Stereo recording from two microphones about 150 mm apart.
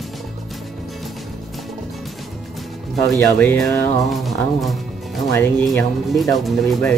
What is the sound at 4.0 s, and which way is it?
Music, centre (ahead or behind).